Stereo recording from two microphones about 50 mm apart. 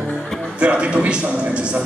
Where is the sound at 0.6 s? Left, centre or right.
Right.